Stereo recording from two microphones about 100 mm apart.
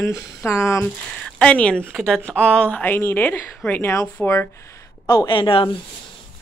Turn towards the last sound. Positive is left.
turn(degrees=65)  # may be behind; listen again after turning